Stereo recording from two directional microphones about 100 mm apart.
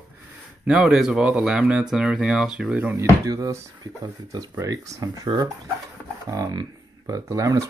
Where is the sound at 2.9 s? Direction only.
35° right (ahead or behind).